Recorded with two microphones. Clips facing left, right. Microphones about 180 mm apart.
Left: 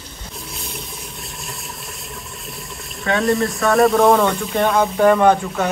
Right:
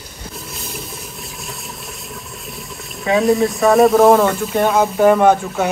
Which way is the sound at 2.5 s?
Centre (ahead or behind).